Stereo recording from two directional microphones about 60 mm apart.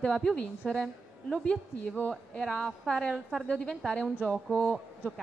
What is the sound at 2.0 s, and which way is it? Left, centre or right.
Speech, left.